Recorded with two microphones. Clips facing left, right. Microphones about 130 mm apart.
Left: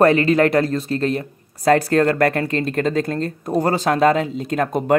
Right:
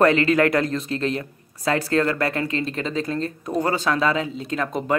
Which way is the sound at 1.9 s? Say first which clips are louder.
Left 5 dB; 50° left (ahead or behind).